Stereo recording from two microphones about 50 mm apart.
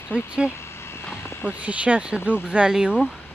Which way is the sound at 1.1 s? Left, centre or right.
Left.